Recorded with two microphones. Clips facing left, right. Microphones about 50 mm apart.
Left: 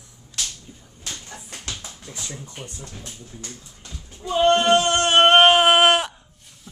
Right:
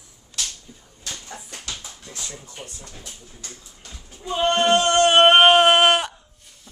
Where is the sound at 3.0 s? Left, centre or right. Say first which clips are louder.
Left 3 dB; left.